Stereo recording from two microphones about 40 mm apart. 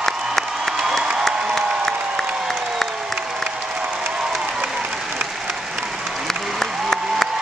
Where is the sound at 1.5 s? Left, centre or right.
Centre.